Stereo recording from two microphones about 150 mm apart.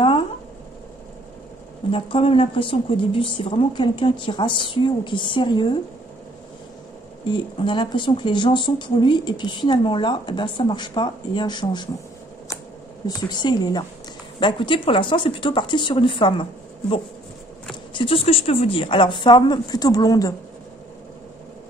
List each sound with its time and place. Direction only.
1.9 s speech: 35° left (ahead or behind)
7.2 s speech: 30° left (ahead or behind)
13.0 s a woman's voice: 30° left (ahead or behind)
17.9 s speech: 35° left (ahead or behind)